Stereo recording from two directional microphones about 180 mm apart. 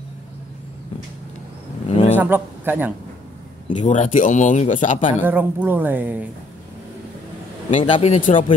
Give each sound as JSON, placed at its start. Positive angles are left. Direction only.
{"t": 1.9, "sound": "a sound", "side_deg": 35}
{"t": 2.1, "sound": "a man's voice", "side_deg": -10}
{"t": 3.8, "sound": "speech", "side_deg": 40}
{"t": 5.2, "sound": "a woman's voice", "side_deg": -10}
{"t": 7.8, "sound": "a man's voice", "side_deg": 35}